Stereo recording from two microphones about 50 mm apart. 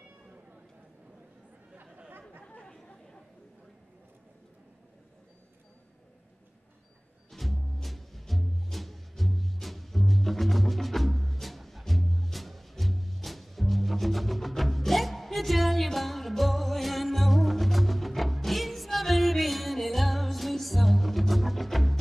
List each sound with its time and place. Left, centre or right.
2.4 s chatter: left
7.2 s music: centre